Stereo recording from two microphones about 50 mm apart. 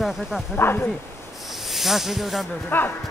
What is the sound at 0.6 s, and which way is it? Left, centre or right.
Speech, left.